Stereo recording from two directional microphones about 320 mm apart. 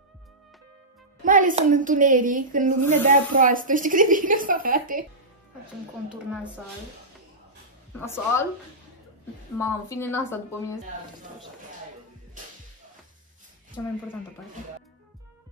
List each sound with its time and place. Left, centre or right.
1.2 s a woman's voice: right
8.0 s speech: centre
9.6 s speech: centre